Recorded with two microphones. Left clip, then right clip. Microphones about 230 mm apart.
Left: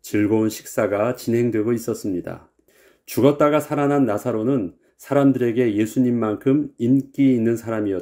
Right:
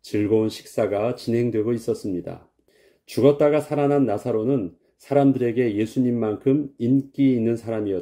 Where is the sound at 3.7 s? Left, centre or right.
Centre.